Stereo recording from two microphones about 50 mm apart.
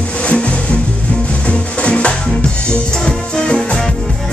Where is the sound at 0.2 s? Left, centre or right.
Left.